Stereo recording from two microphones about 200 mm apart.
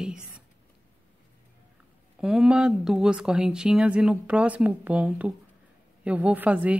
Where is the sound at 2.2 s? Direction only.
5° right (ahead or behind).